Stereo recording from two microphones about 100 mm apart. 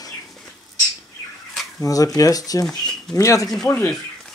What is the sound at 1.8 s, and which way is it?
Speech, 35° left (ahead or behind).